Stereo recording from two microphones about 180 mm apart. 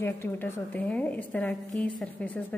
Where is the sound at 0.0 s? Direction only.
15° left (ahead or behind).